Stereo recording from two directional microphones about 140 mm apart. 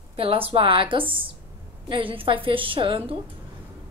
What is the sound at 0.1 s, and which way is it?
A woman's voice, 40° right (ahead or behind).